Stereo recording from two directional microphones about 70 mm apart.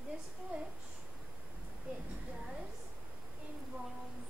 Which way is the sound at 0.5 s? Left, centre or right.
Centre.